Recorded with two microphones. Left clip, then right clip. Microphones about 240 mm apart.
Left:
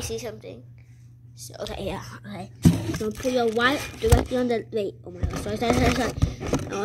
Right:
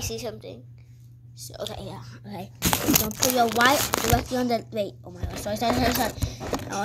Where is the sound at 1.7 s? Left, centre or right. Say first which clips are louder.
Left 7 dB; left.